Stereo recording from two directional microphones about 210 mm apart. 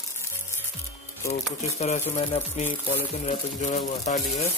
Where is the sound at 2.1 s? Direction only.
30° left (ahead or behind).